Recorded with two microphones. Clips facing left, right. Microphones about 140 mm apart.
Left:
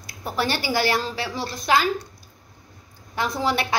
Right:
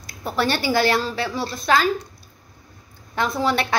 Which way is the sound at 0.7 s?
15° left (ahead or behind).